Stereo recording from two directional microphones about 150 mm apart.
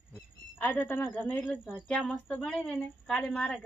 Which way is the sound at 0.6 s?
15° left (ahead or behind).